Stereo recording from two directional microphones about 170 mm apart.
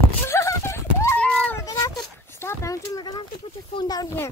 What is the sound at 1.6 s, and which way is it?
Whimper, 20° left (ahead or behind).